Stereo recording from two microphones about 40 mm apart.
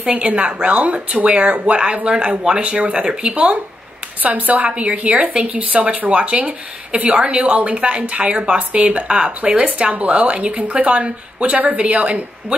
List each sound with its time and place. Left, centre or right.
0.0 s speech: right
4.2 s speech: right
4.6 s speech: right